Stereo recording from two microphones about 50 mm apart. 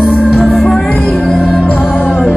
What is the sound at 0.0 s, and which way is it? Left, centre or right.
Music, centre.